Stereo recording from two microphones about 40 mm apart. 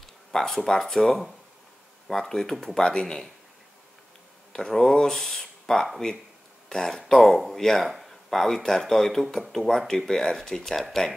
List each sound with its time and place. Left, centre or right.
0.3 s speech: centre
4.5 s speech: centre
5.4 s a sound: centre
6.7 s speech: centre
8.3 s speech: centre